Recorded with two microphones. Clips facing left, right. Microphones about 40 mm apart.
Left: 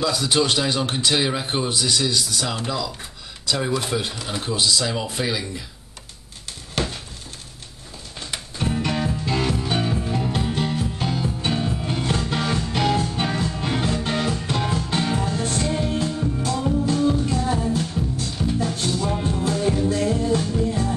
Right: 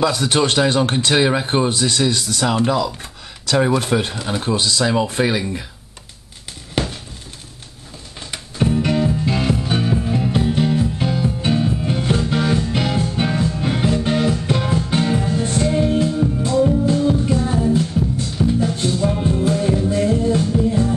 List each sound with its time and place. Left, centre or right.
0.0 s speech: right
6.8 s a sound: centre
9.2 s music: centre
12.0 s music: centre
19.0 s music: centre